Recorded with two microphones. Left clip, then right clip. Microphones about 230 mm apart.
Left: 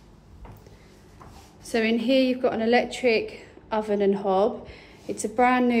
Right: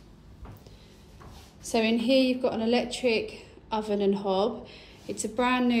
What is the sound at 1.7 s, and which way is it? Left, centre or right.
A woman's voice, centre.